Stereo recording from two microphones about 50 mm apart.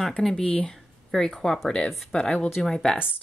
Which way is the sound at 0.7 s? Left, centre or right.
Centre.